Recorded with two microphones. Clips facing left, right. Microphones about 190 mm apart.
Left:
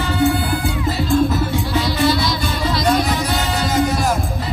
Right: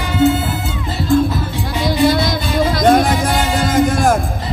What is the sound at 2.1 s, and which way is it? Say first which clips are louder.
Music: right 3 dB; 50° right (ahead or behind).